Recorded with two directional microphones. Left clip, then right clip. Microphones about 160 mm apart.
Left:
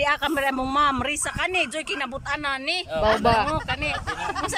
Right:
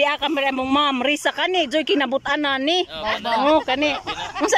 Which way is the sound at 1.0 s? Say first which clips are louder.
Right 6 dB; 30° right (ahead or behind).